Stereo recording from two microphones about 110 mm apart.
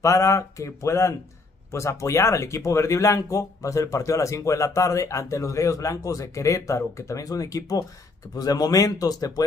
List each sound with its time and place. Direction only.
0.0 s speech: 30° left (ahead or behind)